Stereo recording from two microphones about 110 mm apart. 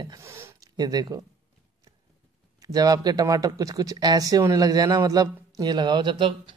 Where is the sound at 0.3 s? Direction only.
25° right (ahead or behind).